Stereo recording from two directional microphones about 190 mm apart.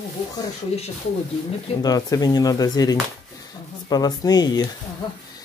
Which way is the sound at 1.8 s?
20° left (ahead or behind).